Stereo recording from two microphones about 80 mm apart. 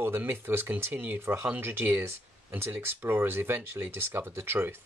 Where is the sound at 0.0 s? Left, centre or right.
Right.